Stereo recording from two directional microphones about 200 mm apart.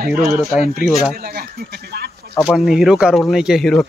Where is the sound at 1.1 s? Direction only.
50° right (ahead or behind).